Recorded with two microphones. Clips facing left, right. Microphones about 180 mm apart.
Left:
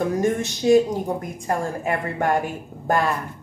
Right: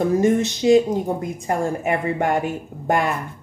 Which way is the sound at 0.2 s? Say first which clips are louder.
Right 4 dB; 20° right (ahead or behind).